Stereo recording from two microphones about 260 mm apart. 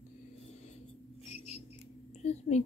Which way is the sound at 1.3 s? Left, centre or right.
Left.